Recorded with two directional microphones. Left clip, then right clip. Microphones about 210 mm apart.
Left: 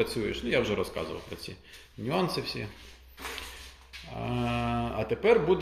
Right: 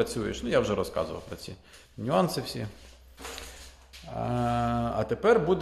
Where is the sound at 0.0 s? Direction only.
15° right (ahead or behind).